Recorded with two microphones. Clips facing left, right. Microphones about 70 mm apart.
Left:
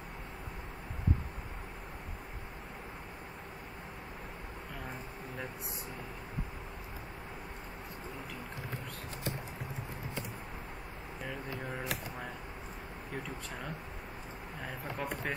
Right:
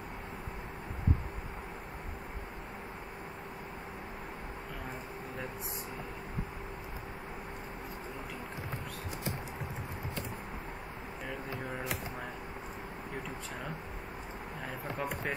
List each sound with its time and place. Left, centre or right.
15.0 s speech: centre